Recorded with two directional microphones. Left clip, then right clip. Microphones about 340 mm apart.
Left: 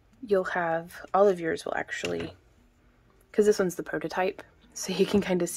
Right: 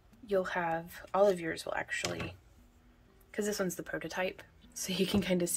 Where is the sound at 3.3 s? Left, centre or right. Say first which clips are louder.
Left 12 dB; centre.